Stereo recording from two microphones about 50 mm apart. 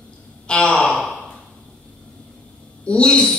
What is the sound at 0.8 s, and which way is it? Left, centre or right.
Sigh, centre.